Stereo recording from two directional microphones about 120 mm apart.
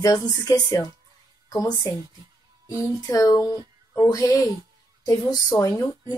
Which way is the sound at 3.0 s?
30° left (ahead or behind).